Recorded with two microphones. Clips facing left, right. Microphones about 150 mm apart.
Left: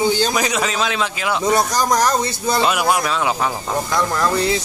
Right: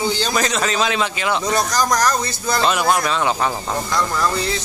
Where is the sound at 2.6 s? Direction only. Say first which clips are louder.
Right 4 dB; 5° left (ahead or behind).